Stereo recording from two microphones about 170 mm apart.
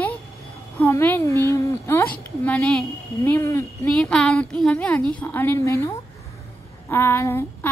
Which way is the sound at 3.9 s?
5° left (ahead or behind).